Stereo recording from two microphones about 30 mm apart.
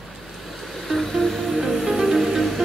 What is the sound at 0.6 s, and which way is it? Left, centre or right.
Music, centre.